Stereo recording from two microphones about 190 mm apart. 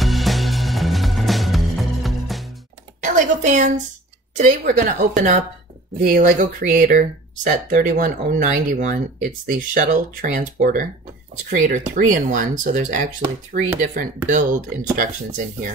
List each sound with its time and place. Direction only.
0.0 s music: centre (ahead or behind)
3.0 s a woman's voice: 40° right (ahead or behind)